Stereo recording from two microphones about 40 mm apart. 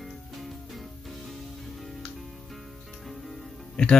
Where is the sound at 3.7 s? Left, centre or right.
Left.